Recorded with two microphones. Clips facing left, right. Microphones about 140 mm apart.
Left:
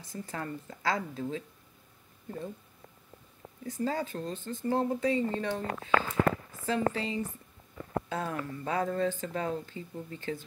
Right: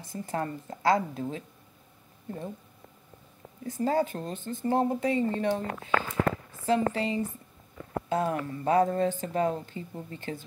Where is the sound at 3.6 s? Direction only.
40° right (ahead or behind).